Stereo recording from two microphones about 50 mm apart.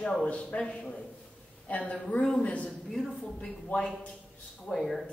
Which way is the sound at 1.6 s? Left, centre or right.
Left.